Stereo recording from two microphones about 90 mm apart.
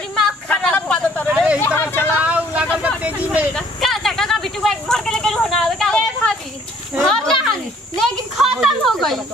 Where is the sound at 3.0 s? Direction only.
15° right (ahead or behind).